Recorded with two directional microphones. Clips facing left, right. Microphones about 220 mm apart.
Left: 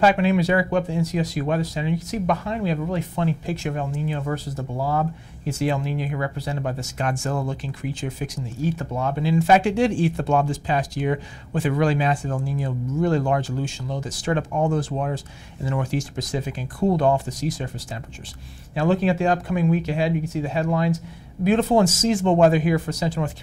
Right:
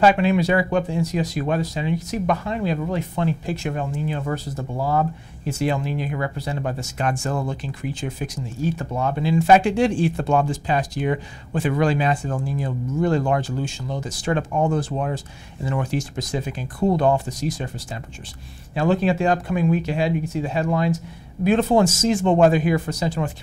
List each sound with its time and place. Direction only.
0.0 s speech: 5° left (ahead or behind)
3.8 s speech: 15° left (ahead or behind)